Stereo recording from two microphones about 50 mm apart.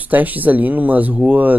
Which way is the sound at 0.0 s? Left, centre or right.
Right.